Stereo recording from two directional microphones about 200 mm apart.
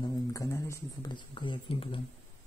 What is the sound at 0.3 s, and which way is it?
Speech, 15° left (ahead or behind).